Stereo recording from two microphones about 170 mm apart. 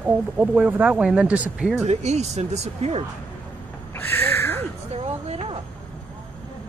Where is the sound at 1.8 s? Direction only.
40° right (ahead or behind).